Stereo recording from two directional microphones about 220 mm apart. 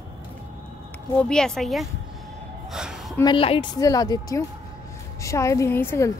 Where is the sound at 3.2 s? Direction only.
20° left (ahead or behind).